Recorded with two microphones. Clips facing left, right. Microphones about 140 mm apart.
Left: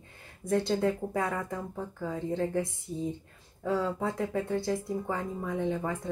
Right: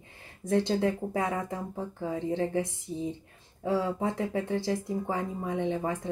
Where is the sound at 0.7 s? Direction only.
20° right (ahead or behind).